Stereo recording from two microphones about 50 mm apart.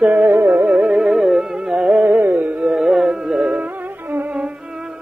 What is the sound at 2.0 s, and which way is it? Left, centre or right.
Carnatic music, right.